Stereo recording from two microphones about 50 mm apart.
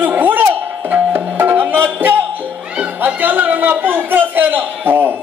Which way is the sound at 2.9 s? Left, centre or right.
Right.